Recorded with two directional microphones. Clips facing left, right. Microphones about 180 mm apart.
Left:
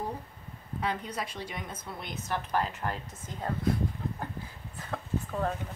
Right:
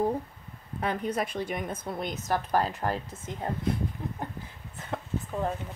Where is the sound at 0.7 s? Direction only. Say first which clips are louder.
Right 4 dB; 55° right (ahead or behind); by 3.0 s 35° right (ahead or behind).